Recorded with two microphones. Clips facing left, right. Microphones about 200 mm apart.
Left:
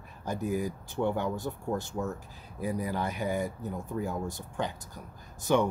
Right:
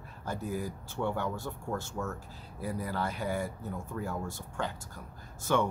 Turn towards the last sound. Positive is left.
turn(degrees=15)  # may be behind; listen again after turning